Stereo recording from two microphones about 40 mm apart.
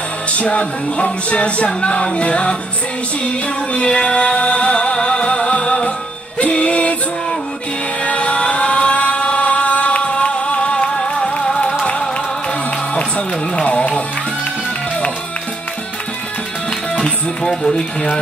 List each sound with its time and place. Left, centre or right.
0.3 s music: left
3.7 s music: left
8.0 s vehicle: left
11.0 s music: left
13.6 s music: left
17.4 s speech: centre